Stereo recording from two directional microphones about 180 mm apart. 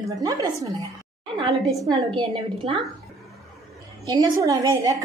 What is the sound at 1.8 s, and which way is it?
Speech, 25° right (ahead or behind).